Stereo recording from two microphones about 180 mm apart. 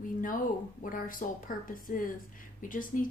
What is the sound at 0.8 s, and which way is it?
A woman's voice, 50° left (ahead or behind).